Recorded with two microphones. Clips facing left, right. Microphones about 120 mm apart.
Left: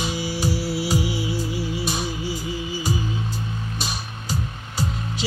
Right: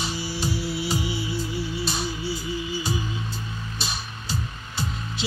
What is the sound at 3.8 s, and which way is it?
Music, 10° left (ahead or behind).